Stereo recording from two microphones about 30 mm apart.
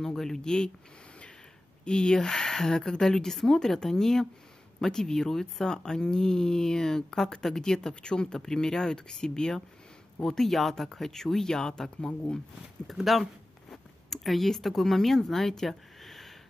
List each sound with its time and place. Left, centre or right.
0.0 s speech: centre
1.9 s speech: left
7.9 s speech: left
12.9 s a sound: centre
14.5 s speech: centre